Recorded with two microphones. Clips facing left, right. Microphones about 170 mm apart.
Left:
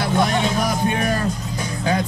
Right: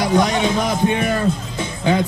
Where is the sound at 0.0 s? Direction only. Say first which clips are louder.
Right 3 dB; 20° right (ahead or behind).